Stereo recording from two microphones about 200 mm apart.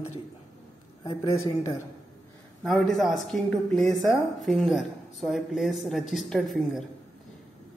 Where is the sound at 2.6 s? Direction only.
Centre (ahead or behind).